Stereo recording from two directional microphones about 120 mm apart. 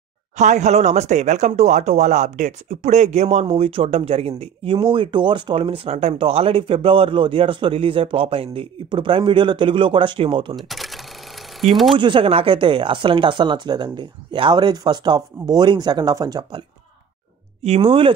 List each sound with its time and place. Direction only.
0.4 s speech: 75° right (ahead or behind); by 4.7 s 60° right (ahead or behind)
4.7 s speech: 45° right (ahead or behind)
10.5 s camera: centre (ahead or behind)
12.0 s speech: 45° right (ahead or behind)
17.6 s speech: 50° right (ahead or behind)